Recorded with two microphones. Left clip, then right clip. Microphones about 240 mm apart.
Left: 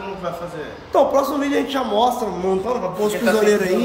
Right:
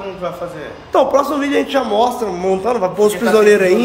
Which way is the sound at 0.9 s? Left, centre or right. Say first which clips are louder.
Right 3 dB; centre.